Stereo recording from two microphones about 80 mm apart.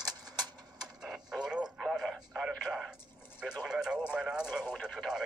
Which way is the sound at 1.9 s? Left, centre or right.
Centre.